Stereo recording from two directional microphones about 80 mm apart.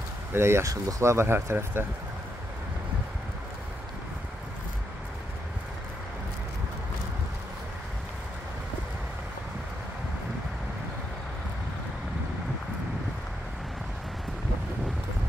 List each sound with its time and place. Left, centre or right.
0.3 s speech: right
0.7 s speech: right